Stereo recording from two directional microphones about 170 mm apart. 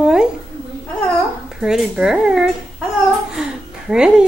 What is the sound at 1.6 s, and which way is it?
Wind instrument, 5° right (ahead or behind).